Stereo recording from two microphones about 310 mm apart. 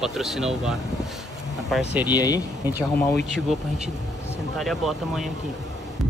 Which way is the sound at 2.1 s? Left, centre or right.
Centre.